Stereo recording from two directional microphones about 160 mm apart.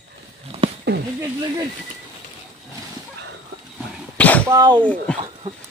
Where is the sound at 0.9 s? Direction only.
90° right.